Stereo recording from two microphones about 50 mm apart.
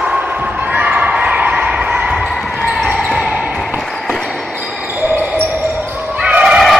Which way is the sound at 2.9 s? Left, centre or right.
Centre.